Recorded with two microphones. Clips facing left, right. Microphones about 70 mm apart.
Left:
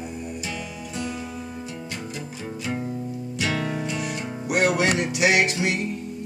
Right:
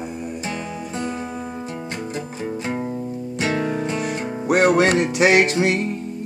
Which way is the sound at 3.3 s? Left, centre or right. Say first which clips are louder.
Right 5 dB; right.